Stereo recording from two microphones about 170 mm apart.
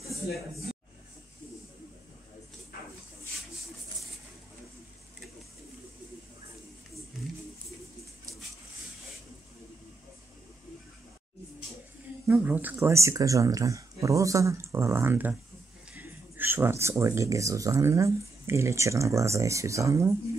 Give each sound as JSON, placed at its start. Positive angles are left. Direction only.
{"t": 12.3, "sound": "speech", "side_deg": -10}